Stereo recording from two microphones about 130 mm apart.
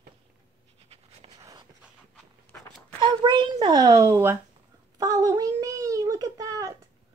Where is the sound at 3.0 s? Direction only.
35° right (ahead or behind).